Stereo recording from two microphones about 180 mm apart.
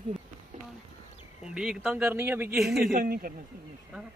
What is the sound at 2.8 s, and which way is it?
Speech, 55° right (ahead or behind).